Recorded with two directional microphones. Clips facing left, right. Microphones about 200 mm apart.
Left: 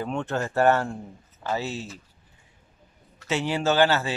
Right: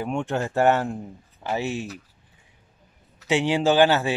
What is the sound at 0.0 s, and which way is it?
Speech, 15° right (ahead or behind).